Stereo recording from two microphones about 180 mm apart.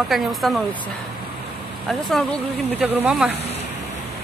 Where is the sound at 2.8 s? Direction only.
10° right (ahead or behind).